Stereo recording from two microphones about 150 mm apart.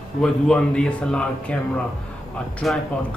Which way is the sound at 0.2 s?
5° left (ahead or behind).